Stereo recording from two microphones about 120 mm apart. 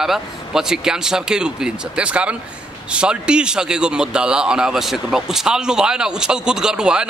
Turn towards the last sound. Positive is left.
turn(degrees=-5)  # may be behind; listen again after turning